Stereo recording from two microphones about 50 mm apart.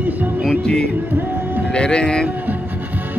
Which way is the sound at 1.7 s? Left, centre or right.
Centre.